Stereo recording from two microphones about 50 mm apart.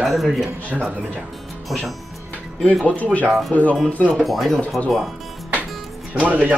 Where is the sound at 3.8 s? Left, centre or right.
Left.